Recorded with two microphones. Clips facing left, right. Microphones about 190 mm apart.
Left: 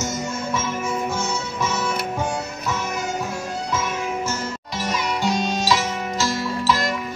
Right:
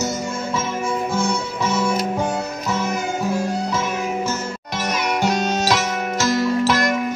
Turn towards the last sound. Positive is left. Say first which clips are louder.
# right 4 dB
turn(degrees=-60)  # may be behind; listen again after turning